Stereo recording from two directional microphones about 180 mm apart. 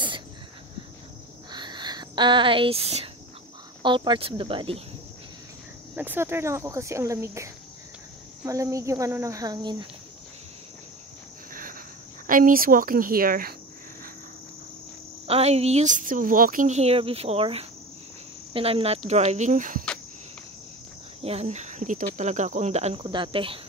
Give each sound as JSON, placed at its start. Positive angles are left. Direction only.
{"t": 1.5, "sound": "a sound", "side_deg": -25}
{"t": 3.8, "sound": "speech", "side_deg": -25}
{"t": 5.9, "sound": "speech", "side_deg": -10}
{"t": 11.5, "sound": "insect", "side_deg": -50}
{"t": 12.3, "sound": "speech", "side_deg": -50}
{"t": 15.2, "sound": "speech", "side_deg": -35}
{"t": 21.2, "sound": "speech", "side_deg": -35}